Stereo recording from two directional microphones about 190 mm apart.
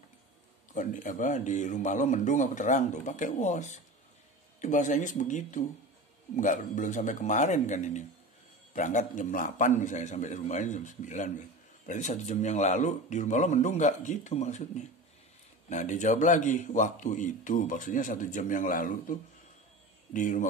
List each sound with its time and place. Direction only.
0.7 s a man's voice: 40° left (ahead or behind)